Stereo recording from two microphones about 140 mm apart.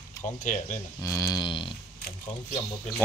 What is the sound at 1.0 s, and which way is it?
Speech, 25° left (ahead or behind).